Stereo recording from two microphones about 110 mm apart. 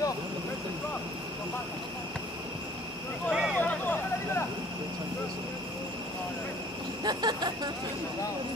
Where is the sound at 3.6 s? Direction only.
15° left (ahead or behind).